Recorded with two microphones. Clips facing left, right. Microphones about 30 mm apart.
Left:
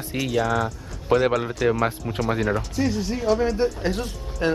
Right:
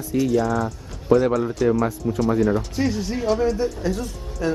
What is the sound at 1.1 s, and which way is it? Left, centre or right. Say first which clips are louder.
Speech: right 2 dB; left.